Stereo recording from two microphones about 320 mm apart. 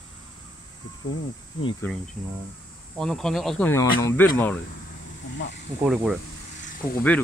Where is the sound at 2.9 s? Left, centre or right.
Centre.